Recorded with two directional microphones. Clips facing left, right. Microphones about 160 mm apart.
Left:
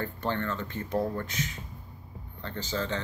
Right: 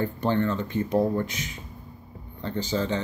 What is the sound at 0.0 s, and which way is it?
Speech, 15° right (ahead or behind).